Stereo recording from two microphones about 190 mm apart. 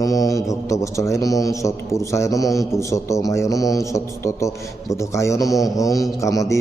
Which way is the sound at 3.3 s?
15° left (ahead or behind).